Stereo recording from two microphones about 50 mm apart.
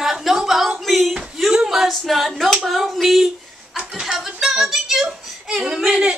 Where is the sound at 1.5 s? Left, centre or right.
Centre.